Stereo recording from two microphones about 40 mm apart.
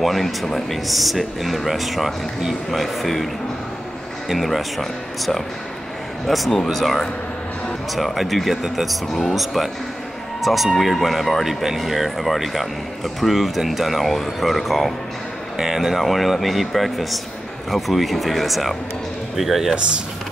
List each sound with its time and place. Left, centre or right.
0.0 s speech: centre
4.3 s speech: centre
9.0 s speech: centre
9.3 s speech: centre
15.5 s speech: centre